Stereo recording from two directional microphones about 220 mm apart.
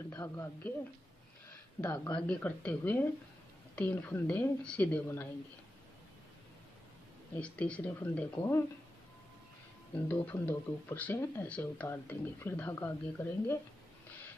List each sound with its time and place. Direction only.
0.1 s speech: 10° left (ahead or behind)
1.8 s speech: 20° left (ahead or behind)
2.2 s speech: 5° left (ahead or behind)
7.3 s speech: 5° left (ahead or behind)
10.0 s speech: 10° left (ahead or behind)